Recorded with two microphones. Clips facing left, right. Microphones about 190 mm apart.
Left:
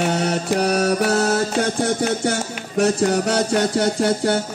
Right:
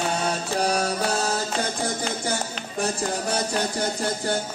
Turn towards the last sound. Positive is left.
turn(degrees=75)  # may be behind; listen again after turning